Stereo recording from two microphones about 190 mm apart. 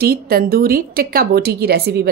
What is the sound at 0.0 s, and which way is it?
A woman's voice, 50° right (ahead or behind).